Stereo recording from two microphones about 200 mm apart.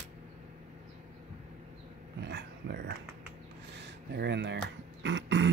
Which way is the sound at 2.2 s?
60° right (ahead or behind).